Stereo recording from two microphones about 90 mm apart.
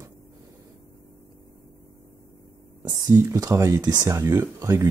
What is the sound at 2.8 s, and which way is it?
Speech, 45° right (ahead or behind).